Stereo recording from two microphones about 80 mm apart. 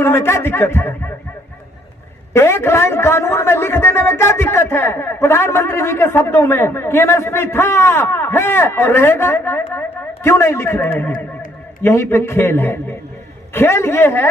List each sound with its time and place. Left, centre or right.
0.0 s a man's voice: left
2.3 s a man's voice: left